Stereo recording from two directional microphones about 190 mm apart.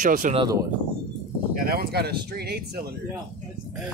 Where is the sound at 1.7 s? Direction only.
55° right (ahead or behind).